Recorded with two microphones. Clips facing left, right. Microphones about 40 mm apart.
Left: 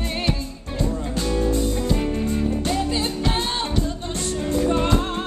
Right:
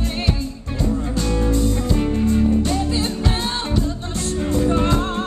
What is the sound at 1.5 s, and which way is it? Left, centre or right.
Music, centre.